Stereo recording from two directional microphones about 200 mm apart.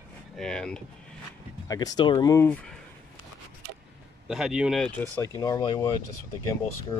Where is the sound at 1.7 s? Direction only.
20° left (ahead or behind).